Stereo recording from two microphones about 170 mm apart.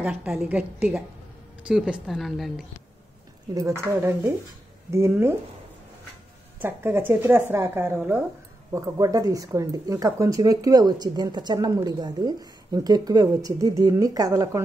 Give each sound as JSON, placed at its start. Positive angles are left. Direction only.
{"t": 0.0, "sound": "a woman's voice", "side_deg": -10}
{"t": 3.5, "sound": "a woman's voice", "side_deg": -15}
{"t": 6.6, "sound": "a woman's voice", "side_deg": -10}